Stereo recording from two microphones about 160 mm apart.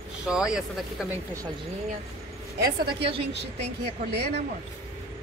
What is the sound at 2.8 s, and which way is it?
Speech, 35° right (ahead or behind).